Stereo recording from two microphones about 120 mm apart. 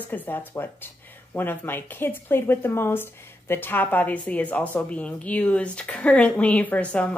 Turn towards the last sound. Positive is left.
turn(degrees=10)  # may be behind; listen again after turning